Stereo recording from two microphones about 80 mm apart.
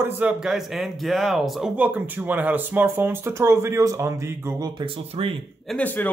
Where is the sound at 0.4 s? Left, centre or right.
Centre.